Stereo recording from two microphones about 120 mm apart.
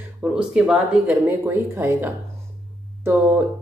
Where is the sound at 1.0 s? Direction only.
20° right (ahead or behind).